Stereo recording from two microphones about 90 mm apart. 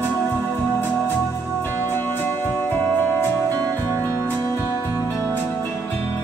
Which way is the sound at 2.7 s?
20° left (ahead or behind).